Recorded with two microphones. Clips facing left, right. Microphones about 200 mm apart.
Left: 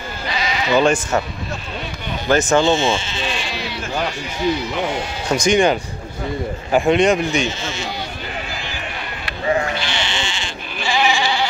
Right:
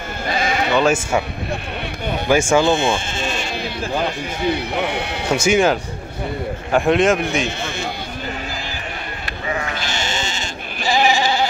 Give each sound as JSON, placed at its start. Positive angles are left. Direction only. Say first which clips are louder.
{"t": 0.3, "sound": "sheep", "louder": "right 1 dB", "side_deg": -50}
{"t": 0.7, "sound": "speech", "louder": "left 2 dB", "side_deg": -5}
{"t": 2.2, "sound": "speech", "louder": "even", "side_deg": -10}
{"t": 2.7, "sound": "sheep", "louder": "even", "side_deg": -55}
{"t": 4.4, "sound": "speech", "louder": "left 1 dB", "side_deg": -60}
{"t": 5.3, "sound": "a man's voice", "louder": "even", "side_deg": -5}
{"t": 7.4, "sound": "a sound", "louder": "even", "side_deg": -55}
{"t": 9.8, "sound": "sheep", "louder": "even", "side_deg": -45}